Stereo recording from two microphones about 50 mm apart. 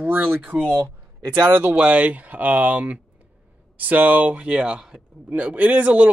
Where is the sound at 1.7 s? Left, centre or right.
Right.